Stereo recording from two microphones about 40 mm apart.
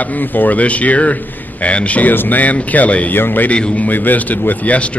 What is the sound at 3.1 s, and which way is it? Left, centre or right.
A man's voice, left.